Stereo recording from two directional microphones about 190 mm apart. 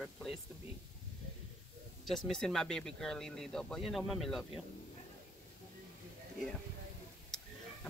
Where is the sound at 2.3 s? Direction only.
5° left (ahead or behind).